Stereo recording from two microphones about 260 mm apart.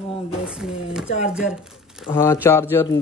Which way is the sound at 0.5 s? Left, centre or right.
Centre.